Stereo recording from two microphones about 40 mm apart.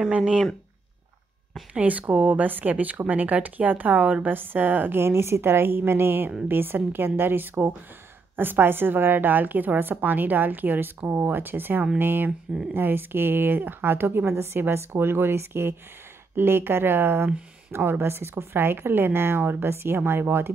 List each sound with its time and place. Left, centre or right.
1.7 s speech: right
4.3 s a woman's voice: right
5.0 s a woman's voice: right
11.0 s a woman's voice: right